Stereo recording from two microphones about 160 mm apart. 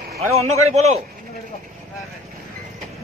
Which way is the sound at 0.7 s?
45° right (ahead or behind).